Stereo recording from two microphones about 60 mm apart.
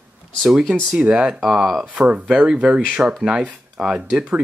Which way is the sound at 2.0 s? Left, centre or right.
Centre.